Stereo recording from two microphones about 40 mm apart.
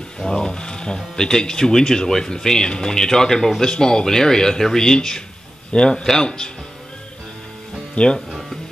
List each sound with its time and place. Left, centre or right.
0.2 s speech: centre
7.9 s speech: left
8.3 s music: centre